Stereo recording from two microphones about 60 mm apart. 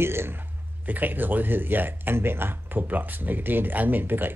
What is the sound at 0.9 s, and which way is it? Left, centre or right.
Speech, right.